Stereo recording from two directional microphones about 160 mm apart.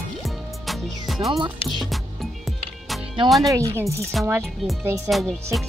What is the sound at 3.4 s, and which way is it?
Speech, 20° right (ahead or behind).